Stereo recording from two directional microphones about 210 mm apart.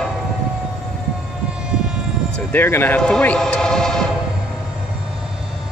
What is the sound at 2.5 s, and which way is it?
Speech, 10° left (ahead or behind).